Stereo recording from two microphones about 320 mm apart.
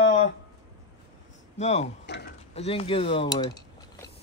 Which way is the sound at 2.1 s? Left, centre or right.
Left.